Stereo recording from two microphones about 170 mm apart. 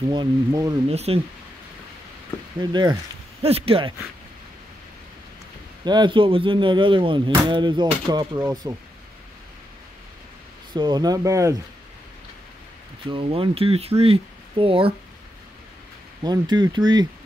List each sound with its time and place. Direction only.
0.1 s speech: 25° right (ahead or behind)
0.8 s speech: 35° right (ahead or behind)
2.6 s speech: 25° right (ahead or behind)
3.4 s speech: 35° right (ahead or behind)
5.9 s speech: 25° right (ahead or behind)
10.7 s speech: 25° right (ahead or behind)
13.1 s speech: 30° right (ahead or behind)
16.2 s speech: 25° right (ahead or behind)